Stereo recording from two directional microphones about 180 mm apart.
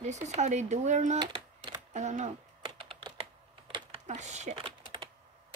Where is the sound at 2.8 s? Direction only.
30° right (ahead or behind).